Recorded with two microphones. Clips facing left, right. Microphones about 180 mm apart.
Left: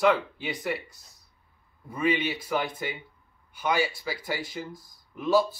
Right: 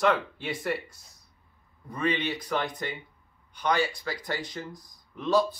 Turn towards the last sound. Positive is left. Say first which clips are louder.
# left 1 dB
turn(degrees=5)  # may be behind; listen again after turning